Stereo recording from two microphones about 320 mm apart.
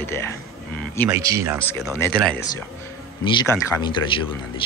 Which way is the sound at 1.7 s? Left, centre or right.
Centre.